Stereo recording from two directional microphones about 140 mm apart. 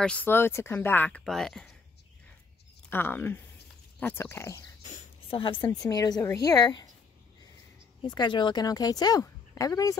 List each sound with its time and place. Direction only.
0.0 s speech: 10° left (ahead or behind)
2.9 s speech: 15° left (ahead or behind)
5.3 s a woman's voice: 35° left (ahead or behind)
8.0 s a woman's voice: 35° left (ahead or behind)